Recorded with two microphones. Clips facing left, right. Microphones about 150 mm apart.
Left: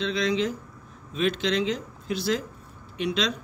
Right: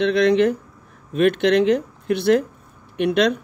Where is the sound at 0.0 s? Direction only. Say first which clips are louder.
Right 9 dB; 60° right (ahead or behind).